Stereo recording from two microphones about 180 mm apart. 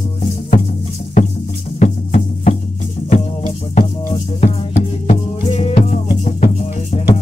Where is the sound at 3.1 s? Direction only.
40° left (ahead or behind).